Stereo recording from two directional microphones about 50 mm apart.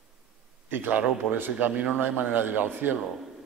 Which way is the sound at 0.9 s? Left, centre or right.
Right.